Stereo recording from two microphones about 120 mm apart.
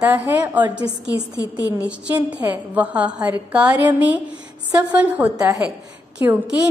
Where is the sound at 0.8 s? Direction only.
25° left (ahead or behind).